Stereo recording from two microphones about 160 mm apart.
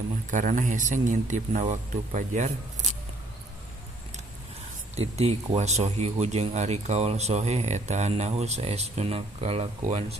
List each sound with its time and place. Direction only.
0.3 s speech: 50° right (ahead or behind)
4.9 s speech: 40° right (ahead or behind)